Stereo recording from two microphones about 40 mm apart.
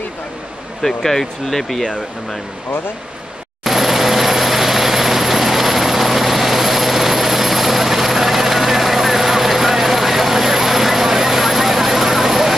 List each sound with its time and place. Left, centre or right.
0.8 s speech: centre
3.6 s vehicle: centre